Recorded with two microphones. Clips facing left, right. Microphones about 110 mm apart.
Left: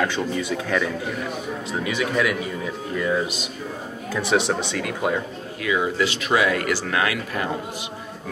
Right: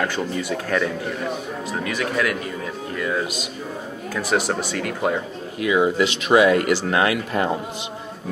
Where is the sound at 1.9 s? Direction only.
Centre (ahead or behind).